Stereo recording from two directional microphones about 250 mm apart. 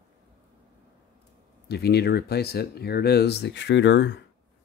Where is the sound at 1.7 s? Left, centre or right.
Left.